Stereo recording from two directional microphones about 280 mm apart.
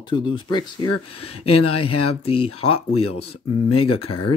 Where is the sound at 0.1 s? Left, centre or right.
Centre.